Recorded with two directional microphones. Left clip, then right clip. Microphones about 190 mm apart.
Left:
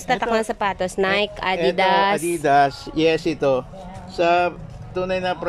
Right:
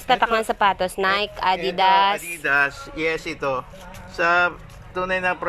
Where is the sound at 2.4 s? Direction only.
30° left (ahead or behind).